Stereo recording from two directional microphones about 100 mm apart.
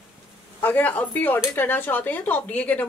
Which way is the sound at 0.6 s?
20° left (ahead or behind).